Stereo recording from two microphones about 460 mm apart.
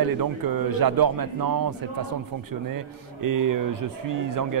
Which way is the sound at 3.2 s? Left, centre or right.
Right.